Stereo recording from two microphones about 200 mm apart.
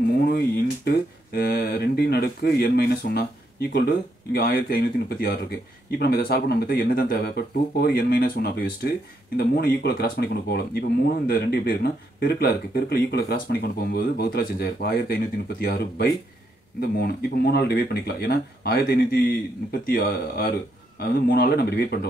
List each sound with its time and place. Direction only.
0.3 s speech: 50° left (ahead or behind)